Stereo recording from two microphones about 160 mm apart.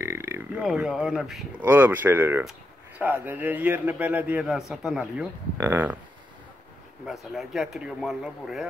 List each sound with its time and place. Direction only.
0.0 s a sound: 15° right (ahead or behind)
0.7 s a man's voice: 5° right (ahead or behind)
7.1 s speech: centre (ahead or behind)